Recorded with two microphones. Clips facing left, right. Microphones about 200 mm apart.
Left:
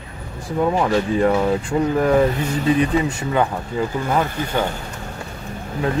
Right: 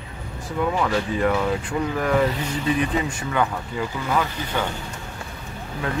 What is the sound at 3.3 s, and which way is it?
Speech, 30° left (ahead or behind).